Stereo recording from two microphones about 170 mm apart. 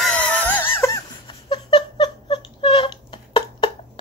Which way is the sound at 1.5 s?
25° left (ahead or behind).